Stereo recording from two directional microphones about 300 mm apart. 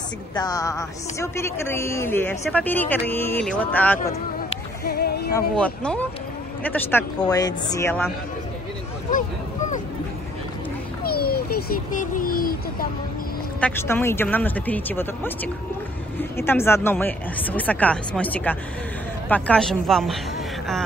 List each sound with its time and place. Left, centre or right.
0.4 s a man's voice: centre
4.8 s speech: left
5.3 s a man's voice: centre
11.1 s a sound: left
13.6 s a man's voice: centre